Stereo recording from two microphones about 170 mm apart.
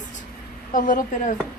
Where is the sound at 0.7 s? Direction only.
50° left (ahead or behind).